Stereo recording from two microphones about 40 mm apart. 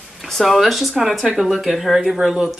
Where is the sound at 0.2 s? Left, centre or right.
Centre.